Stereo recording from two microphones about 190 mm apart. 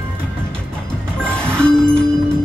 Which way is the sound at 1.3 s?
5° left (ahead or behind).